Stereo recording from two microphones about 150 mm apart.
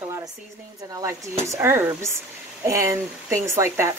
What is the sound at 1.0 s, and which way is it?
Speech, 15° right (ahead or behind).